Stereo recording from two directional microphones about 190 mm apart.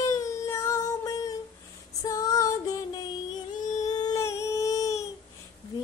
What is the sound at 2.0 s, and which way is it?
Female singing, 15° left (ahead or behind).